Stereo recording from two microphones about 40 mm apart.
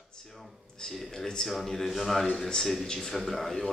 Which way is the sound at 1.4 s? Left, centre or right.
Centre.